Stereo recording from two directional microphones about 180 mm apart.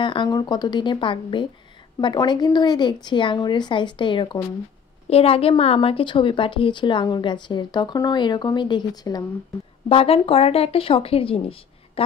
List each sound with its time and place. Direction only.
0.0 s a woman's voice: 25° left (ahead or behind)
9.8 s speech: 30° left (ahead or behind)